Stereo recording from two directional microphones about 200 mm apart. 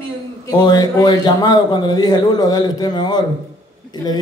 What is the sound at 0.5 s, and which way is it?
A man's voice, 20° left (ahead or behind).